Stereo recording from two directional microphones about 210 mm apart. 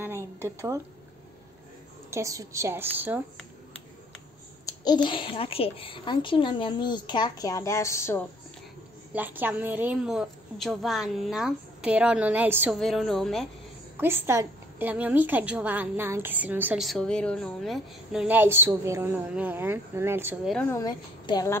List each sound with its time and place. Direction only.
0.0 s a sound: 10° right (ahead or behind)
2.0 s a woman's voice: 15° right (ahead or behind)
4.6 s a child's voice: 20° left (ahead or behind)
9.1 s a woman's voice: 10° right (ahead or behind)
13.9 s a woman's voice: 10° right (ahead or behind)
20.4 s speech: 5° left (ahead or behind)